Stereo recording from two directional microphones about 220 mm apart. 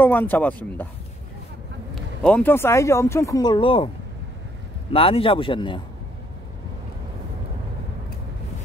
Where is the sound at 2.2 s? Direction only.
5° left (ahead or behind); by 3.9 s 25° left (ahead or behind).